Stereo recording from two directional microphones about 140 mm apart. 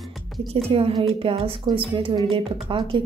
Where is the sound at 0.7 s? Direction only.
40° right (ahead or behind).